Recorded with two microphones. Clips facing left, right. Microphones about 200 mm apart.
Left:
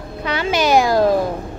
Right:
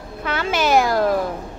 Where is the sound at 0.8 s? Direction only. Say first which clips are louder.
Left 4 dB; 20° left (ahead or behind).